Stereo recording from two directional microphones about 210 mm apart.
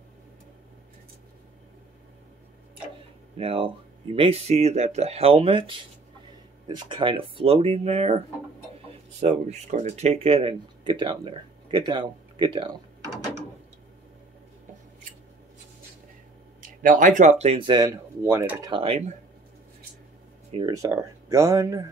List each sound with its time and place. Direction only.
3.3 s speech: 25° right (ahead or behind)
9.2 s speech: 35° right (ahead or behind)
16.8 s speech: 40° right (ahead or behind)
20.5 s speech: 15° right (ahead or behind)